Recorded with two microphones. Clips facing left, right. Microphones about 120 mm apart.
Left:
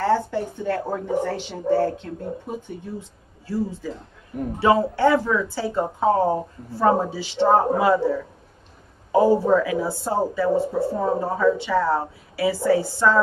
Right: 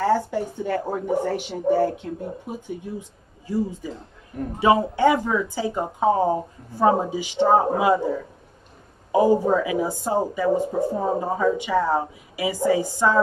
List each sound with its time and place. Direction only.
0.3 s speech: 15° right (ahead or behind)